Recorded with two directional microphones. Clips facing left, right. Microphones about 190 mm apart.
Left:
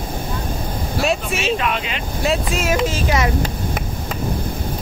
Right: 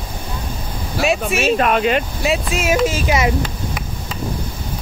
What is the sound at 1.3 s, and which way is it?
Speech, 50° right (ahead or behind).